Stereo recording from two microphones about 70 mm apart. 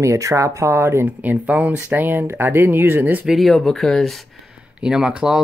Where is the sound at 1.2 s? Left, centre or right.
Right.